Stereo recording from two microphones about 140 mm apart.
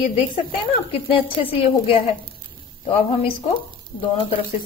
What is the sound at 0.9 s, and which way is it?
Speech, 40° left (ahead or behind).